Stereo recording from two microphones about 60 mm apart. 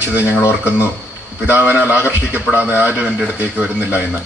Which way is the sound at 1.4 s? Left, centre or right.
Right.